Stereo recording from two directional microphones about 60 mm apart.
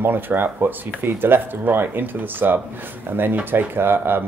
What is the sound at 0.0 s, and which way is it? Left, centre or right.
Speech, right.